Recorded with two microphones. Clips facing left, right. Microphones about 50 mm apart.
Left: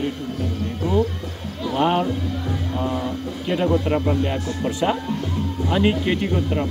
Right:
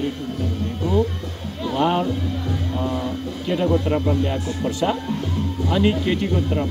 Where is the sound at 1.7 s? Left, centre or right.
Left.